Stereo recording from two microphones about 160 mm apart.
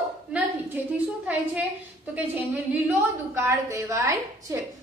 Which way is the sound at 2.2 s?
10° right (ahead or behind).